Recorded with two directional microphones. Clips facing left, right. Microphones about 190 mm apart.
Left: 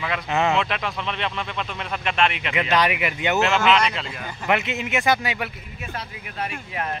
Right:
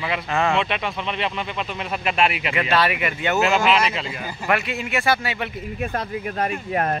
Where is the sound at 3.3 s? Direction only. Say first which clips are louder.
Right 1 dB; centre (ahead or behind).